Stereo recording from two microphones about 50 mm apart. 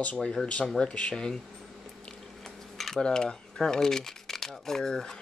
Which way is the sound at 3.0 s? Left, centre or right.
Centre.